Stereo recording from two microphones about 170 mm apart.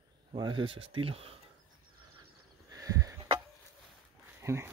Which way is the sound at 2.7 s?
20° right (ahead or behind).